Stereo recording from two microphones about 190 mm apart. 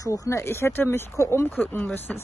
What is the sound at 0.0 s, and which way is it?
A woman's voice, 15° left (ahead or behind).